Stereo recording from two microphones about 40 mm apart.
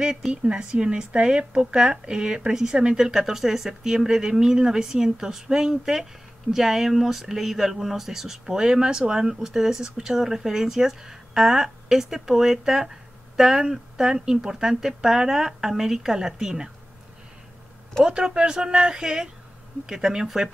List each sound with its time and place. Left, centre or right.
0.0 s a woman's voice: centre
3.0 s speech: centre
18.0 s a woman's voice: right